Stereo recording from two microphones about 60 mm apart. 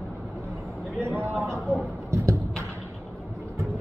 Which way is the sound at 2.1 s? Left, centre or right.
Right.